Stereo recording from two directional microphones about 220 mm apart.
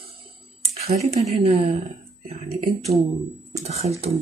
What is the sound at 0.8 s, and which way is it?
Speech, 30° right (ahead or behind).